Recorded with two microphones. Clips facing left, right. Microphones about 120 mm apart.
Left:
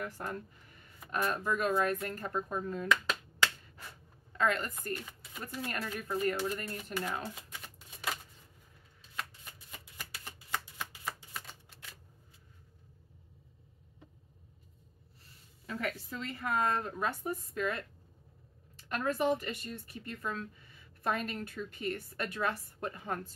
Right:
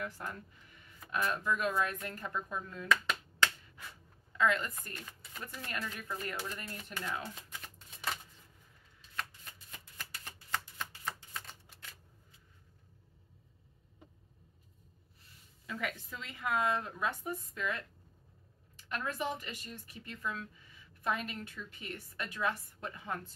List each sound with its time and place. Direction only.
0.0 s a woman's voice: 45° left (ahead or behind)
4.3 s speech: 40° left (ahead or behind)
6.5 s speech: 10° left (ahead or behind)
9.1 s shuffling cards: 10° left (ahead or behind)
15.6 s speech: 40° left (ahead or behind)
18.9 s a woman's voice: 45° left (ahead or behind)